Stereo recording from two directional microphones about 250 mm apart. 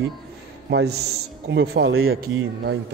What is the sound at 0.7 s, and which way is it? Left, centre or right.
A man's voice, right.